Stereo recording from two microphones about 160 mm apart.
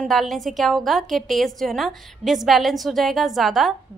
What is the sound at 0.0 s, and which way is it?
A woman's voice, centre (ahead or behind).